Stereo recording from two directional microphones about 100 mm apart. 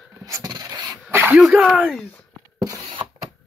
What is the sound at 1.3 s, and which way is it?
Speech, 5° right (ahead or behind).